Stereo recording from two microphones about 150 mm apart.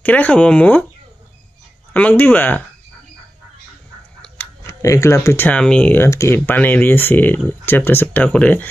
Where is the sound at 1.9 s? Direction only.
10° left (ahead or behind).